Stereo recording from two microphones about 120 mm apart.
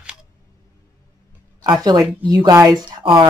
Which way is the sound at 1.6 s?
30° right (ahead or behind).